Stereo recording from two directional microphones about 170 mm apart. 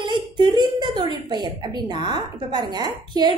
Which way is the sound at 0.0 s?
25° right (ahead or behind).